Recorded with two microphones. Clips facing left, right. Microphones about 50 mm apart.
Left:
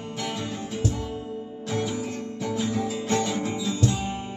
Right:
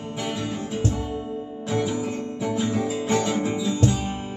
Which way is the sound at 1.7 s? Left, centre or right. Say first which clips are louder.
Right 3 dB; right.